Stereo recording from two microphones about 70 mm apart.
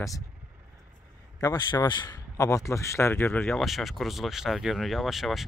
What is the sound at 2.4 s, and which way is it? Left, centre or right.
Speech, left.